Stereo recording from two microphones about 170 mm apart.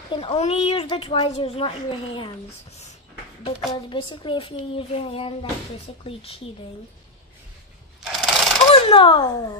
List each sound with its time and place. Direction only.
0.1 s speech: 35° left (ahead or behind)
3.7 s speech: 30° left (ahead or behind)
8.0 s sewing machine: 5° right (ahead or behind)
8.7 s speech: 30° left (ahead or behind)